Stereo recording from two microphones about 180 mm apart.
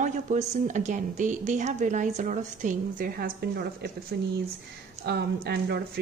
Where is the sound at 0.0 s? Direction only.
40° right (ahead or behind).